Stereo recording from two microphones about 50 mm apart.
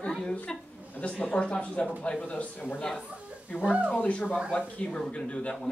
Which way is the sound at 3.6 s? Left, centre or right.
Right.